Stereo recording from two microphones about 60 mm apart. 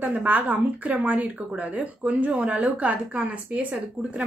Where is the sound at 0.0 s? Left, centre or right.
Right.